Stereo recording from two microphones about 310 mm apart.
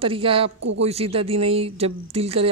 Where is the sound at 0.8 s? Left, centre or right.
Centre.